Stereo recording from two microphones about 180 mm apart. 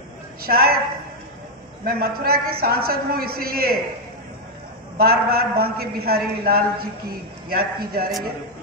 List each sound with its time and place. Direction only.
0.4 s a man's voice: 55° right (ahead or behind)
1.9 s a man's voice: 60° right (ahead or behind)
4.9 s a man's voice: 60° right (ahead or behind)